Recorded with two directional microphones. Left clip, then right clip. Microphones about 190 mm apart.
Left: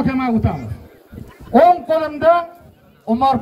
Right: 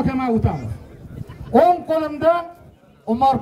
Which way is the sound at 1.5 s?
90° right.